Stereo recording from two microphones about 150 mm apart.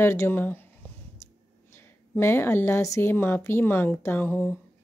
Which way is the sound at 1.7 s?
15° left (ahead or behind).